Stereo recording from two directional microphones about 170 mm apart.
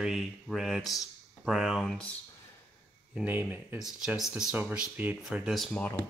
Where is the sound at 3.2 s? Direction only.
10° right (ahead or behind).